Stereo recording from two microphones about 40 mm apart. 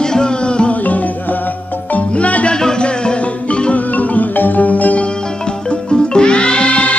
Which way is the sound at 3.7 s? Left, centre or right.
Left.